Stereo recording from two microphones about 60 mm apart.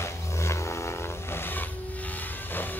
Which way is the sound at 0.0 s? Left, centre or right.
Left.